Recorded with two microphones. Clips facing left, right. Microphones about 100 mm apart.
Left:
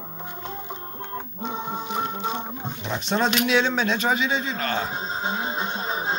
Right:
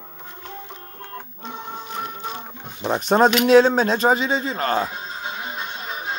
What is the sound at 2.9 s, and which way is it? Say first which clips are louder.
A man's voice: right 7 dB; 45° right (ahead or behind).